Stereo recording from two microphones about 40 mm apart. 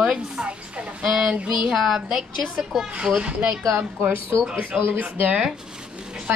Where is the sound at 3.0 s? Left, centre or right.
Right.